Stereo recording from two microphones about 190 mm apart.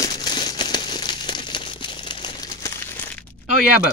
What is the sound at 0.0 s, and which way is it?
Crumpling, 20° left (ahead or behind).